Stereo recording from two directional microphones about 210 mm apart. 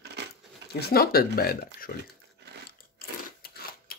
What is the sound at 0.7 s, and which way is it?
Speech, 50° left (ahead or behind).